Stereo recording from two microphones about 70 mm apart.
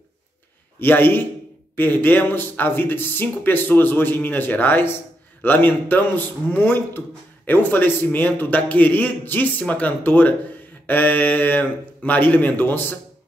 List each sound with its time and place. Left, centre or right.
0.7 s speech: left